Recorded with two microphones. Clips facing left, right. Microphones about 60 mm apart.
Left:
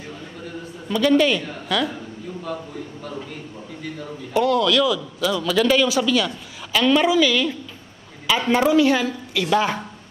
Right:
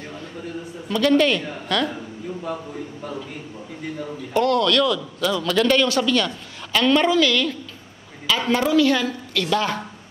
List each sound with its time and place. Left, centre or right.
0.8 s a man's voice: centre
2.5 s a man's voice: centre
4.3 s a man's voice: centre